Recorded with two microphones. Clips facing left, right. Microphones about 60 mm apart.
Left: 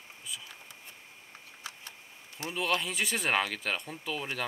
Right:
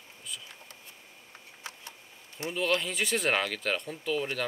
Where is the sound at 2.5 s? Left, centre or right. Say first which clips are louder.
Right 2 dB; centre.